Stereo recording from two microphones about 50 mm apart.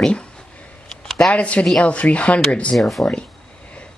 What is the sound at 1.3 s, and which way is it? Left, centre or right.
Speech, left.